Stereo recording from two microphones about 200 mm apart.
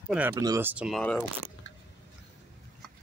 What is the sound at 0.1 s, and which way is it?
Speech, 10° right (ahead or behind).